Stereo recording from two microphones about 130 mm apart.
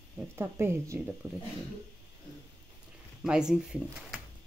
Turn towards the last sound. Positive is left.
turn(degrees=-5)  # may be behind; listen again after turning